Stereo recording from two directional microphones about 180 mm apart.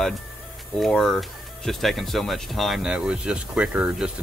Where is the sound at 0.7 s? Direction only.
Centre (ahead or behind).